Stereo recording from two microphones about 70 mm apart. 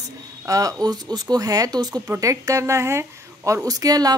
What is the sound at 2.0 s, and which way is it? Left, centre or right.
Speech, right.